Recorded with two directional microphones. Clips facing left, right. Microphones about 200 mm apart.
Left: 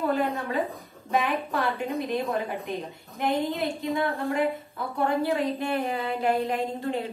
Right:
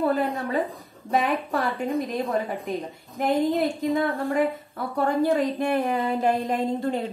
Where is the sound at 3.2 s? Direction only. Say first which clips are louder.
Right 4 dB; 45° right (ahead or behind).